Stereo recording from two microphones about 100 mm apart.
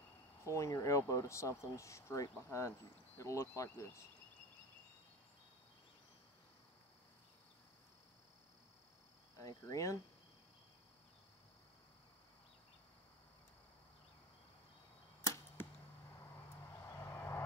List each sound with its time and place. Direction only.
0.5 s speech: 30° left (ahead or behind)
9.4 s speech: 35° left (ahead or behind)
15.6 s arrow: 20° left (ahead or behind)
16.8 s vehicle: 30° left (ahead or behind)